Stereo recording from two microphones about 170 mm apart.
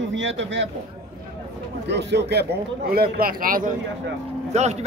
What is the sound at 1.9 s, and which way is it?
Speech, 90° right.